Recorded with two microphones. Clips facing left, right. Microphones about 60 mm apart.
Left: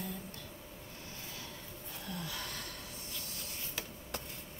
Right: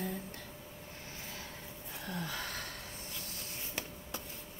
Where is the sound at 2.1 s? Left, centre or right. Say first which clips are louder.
Right 3 dB; right.